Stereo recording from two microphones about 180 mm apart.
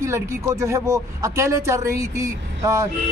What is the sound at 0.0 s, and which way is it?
Speech, 15° right (ahead or behind).